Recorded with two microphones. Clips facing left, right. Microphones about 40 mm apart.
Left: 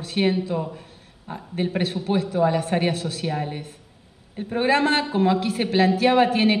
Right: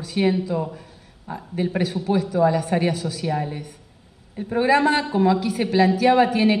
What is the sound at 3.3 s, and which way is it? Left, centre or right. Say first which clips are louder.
A man's voice: right 3 dB; left.